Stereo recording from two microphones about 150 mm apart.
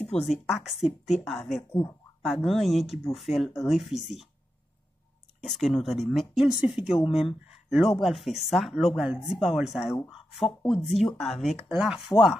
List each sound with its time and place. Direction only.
0.0 s a woman's voice: centre (ahead or behind)
5.4 s a woman's voice: centre (ahead or behind)